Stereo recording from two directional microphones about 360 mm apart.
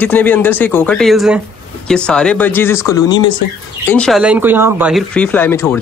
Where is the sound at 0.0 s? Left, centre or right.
Centre.